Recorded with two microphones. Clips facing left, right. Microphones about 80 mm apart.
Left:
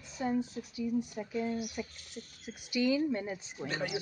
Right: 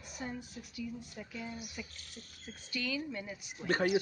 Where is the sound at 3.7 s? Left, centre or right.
Right.